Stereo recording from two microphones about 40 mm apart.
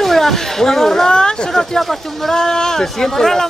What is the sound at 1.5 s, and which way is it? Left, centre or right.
Speech, centre.